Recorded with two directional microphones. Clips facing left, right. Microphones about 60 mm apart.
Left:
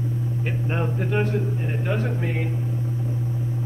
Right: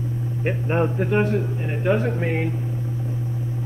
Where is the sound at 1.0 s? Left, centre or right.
Centre.